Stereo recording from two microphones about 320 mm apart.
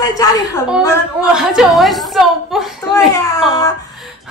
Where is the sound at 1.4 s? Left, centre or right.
Centre.